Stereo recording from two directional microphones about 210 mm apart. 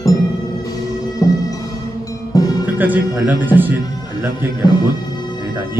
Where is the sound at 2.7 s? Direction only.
10° right (ahead or behind).